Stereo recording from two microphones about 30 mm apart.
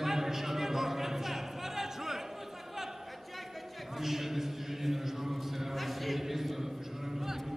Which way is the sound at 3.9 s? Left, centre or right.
Centre.